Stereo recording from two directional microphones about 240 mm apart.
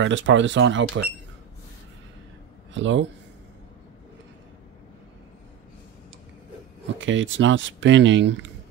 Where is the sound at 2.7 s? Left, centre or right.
Right.